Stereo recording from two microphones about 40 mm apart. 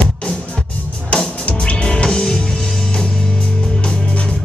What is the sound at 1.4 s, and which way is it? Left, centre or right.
Music, left.